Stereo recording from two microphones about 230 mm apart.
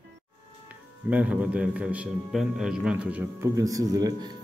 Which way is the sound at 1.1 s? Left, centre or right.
Centre.